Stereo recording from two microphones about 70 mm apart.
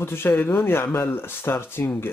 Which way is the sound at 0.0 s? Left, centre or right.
Left.